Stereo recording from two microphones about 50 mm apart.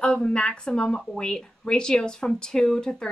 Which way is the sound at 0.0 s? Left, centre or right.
Left.